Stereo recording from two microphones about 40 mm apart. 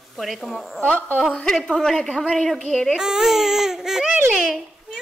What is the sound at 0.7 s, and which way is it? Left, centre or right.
Speech, left.